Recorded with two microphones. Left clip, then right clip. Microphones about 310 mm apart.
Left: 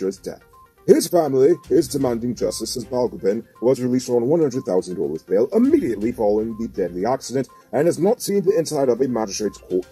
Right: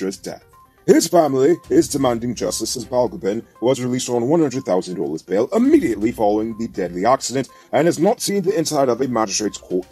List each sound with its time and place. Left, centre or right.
0.0 s speech: right